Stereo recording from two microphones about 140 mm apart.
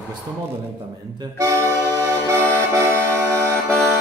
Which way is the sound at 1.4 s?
20° right (ahead or behind).